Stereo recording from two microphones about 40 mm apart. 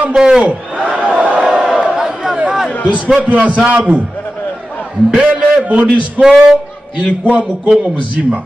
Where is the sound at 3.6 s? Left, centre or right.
Right.